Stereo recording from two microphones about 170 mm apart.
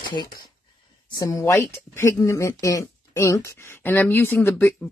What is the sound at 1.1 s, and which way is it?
Speech, 20° left (ahead or behind).